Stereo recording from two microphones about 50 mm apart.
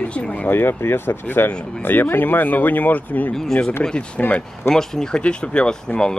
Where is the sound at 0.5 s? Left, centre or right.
Left.